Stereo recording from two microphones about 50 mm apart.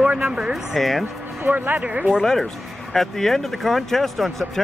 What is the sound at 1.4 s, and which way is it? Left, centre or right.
Speech, right.